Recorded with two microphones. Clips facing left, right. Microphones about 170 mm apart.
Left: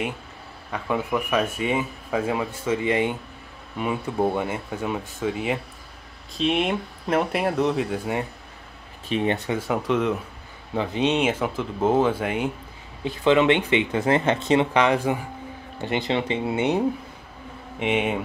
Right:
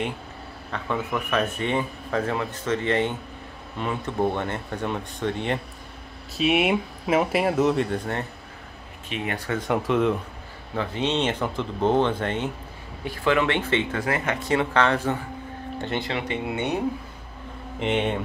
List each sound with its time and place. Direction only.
0.7 s speech: 10° left (ahead or behind)
6.3 s speech: 5° right (ahead or behind)
9.1 s a man's voice: 30° left (ahead or behind)
9.5 s speech: 5° left (ahead or behind)
10.7 s speech: 15° left (ahead or behind)
13.0 s a man's voice: 20° left (ahead or behind)
14.0 s a man's voice: 25° left (ahead or behind)
16.1 s a man's voice: 30° left (ahead or behind)
17.7 s speech: 5° left (ahead or behind)